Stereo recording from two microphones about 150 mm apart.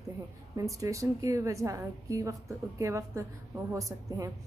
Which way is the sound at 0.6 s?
20° right (ahead or behind).